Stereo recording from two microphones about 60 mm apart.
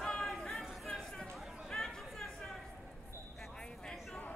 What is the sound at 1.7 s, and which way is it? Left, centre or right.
Chatter, centre.